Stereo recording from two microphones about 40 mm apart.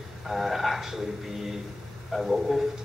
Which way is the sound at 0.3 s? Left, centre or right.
Centre.